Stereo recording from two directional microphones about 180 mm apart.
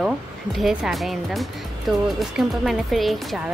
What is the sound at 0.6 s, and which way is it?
Speech, centre (ahead or behind).